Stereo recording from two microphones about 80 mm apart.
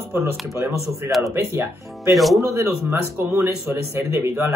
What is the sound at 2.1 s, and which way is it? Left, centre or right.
Speech, centre.